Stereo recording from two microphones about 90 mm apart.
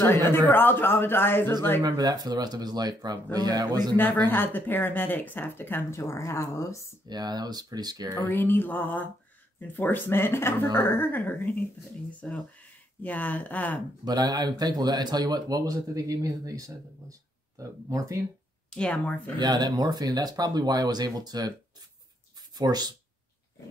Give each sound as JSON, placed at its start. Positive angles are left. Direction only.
{"t": 0.0, "sound": "speech", "side_deg": 25}
{"t": 1.8, "sound": "speech", "side_deg": -45}
{"t": 3.9, "sound": "speech", "side_deg": 20}
{"t": 5.9, "sound": "speech", "side_deg": 35}
{"t": 7.1, "sound": "speech", "side_deg": -50}
{"t": 8.3, "sound": "speech", "side_deg": 25}
{"t": 14.0, "sound": "speech", "side_deg": -50}
{"t": 18.7, "sound": "speech", "side_deg": 10}
{"t": 19.3, "sound": "speech", "side_deg": -50}
{"t": 22.6, "sound": "speech", "side_deg": -50}